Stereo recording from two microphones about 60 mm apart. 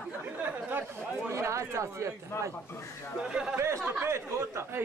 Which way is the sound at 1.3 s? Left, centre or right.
Right.